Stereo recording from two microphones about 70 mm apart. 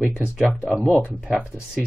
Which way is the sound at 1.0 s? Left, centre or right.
Centre.